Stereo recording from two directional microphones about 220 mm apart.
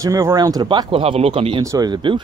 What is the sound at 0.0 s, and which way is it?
Speech, 15° right (ahead or behind).